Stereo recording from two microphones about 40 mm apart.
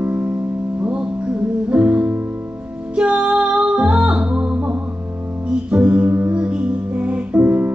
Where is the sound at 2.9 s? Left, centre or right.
Right.